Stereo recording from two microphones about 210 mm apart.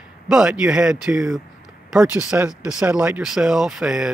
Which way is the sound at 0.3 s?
5° right (ahead or behind).